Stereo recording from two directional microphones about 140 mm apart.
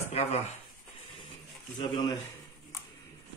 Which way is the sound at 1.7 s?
30° left (ahead or behind).